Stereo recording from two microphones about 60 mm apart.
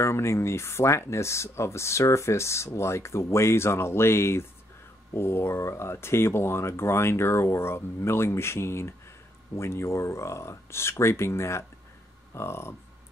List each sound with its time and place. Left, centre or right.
0.0 s speech: left